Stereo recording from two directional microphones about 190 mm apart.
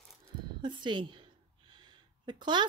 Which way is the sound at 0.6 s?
25° right (ahead or behind).